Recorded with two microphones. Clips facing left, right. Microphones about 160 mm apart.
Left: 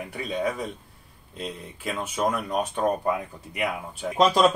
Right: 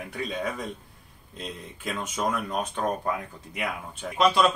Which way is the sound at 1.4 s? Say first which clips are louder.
Left 3 dB; 5° left (ahead or behind).